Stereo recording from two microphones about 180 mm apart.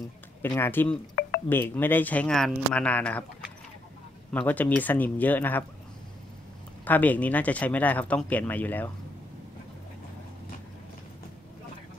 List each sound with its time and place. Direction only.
0.4 s speech: 10° left (ahead or behind)
1.2 s a sound: 55° left (ahead or behind)
1.5 s speech: 10° left (ahead or behind)
4.3 s speech: 10° left (ahead or behind)
6.8 s speech: 10° left (ahead or behind)